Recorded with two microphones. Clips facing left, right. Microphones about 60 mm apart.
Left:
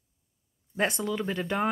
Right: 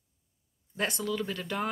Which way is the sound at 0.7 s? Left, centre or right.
Left.